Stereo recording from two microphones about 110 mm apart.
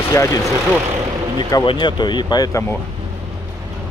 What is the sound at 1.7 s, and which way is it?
Speech, 45° left (ahead or behind).